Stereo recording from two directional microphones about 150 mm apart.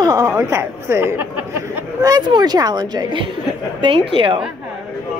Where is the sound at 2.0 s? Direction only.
25° right (ahead or behind).